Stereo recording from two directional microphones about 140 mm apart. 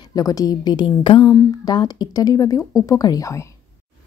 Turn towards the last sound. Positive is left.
turn(degrees=25)  # may be behind; listen again after turning